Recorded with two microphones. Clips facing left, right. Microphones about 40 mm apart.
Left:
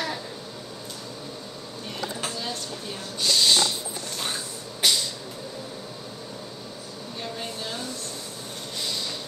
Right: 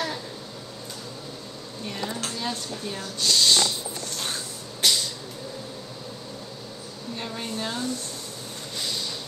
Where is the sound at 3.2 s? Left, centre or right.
Centre.